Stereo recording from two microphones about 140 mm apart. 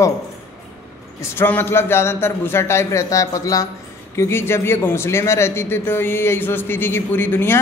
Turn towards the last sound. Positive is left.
turn(degrees=15)  # may be behind; listen again after turning